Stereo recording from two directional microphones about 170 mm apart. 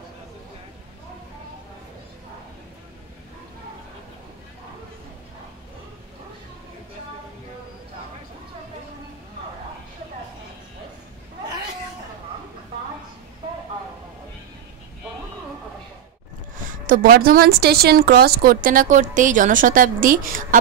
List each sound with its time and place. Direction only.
16.8 s a woman's voice: 55° right (ahead or behind)